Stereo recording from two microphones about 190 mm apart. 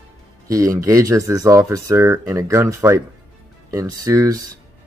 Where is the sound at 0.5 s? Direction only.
15° right (ahead or behind).